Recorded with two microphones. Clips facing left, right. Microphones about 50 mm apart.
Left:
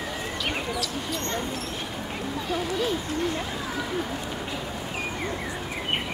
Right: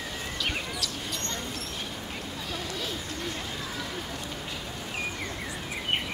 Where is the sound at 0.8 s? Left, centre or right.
Centre.